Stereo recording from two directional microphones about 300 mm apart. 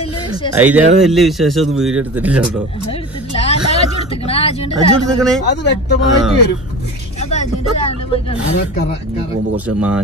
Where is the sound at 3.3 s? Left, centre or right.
Centre.